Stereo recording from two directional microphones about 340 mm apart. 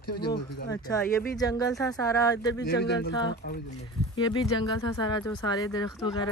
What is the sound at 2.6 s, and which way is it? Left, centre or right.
Speech, left.